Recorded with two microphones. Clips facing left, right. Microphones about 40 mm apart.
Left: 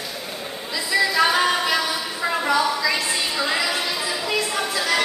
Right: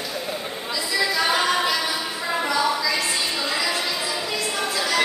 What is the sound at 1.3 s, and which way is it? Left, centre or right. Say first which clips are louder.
A capella: left 1 dB; centre.